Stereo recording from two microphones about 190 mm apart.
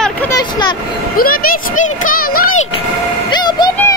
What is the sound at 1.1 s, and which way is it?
Speech, 50° left (ahead or behind).